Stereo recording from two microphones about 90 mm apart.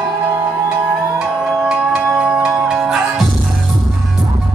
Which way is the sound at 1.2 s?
10° right (ahead or behind).